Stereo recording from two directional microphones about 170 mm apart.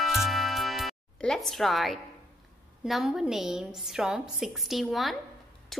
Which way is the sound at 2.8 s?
5° right (ahead or behind).